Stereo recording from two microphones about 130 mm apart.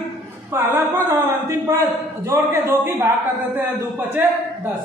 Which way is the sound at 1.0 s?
25° right (ahead or behind).